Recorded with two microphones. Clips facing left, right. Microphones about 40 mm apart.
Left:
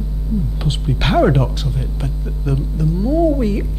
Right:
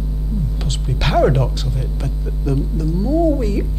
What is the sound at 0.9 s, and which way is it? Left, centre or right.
Speech, centre.